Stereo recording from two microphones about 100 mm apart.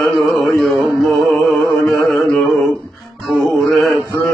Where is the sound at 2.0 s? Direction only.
Centre (ahead or behind).